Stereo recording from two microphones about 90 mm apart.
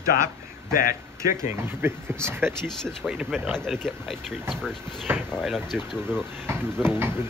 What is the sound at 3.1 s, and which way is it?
Speech, 5° right (ahead or behind).